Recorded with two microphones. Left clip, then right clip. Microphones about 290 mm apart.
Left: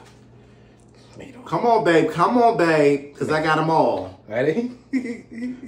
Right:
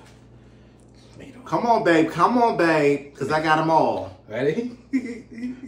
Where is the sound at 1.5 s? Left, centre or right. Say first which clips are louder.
Left 1 dB; centre.